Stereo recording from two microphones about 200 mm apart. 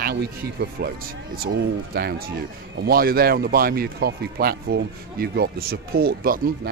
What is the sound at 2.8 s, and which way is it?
A man's voice, 50° right (ahead or behind).